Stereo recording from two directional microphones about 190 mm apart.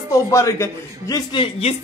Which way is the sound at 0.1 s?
15° left (ahead or behind).